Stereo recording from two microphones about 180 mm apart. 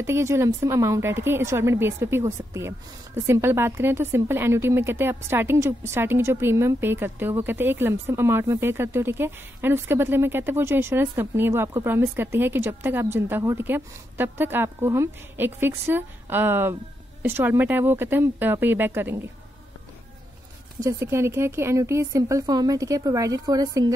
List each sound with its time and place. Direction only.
0.0 s a woman's voice: 15° right (ahead or behind)
20.8 s speech: 15° right (ahead or behind)